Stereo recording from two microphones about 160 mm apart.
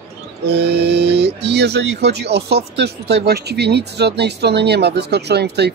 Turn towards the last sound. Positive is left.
turn(degrees=-90)